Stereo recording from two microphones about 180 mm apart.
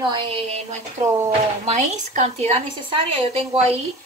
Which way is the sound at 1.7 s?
40° right (ahead or behind).